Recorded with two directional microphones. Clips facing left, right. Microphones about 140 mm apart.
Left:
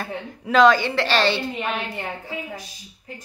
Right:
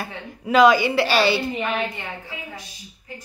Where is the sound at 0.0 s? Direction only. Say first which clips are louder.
Left 1 dB; 10° right (ahead or behind).